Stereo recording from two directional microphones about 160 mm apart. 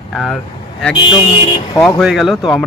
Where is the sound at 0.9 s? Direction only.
25° left (ahead or behind).